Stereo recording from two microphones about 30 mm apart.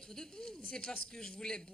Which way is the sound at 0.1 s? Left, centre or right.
Left.